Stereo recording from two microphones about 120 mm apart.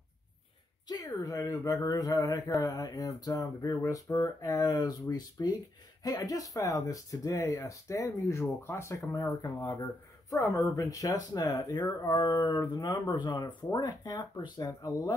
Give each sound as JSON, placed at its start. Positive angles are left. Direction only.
{"t": 0.8, "sound": "speech", "side_deg": 30}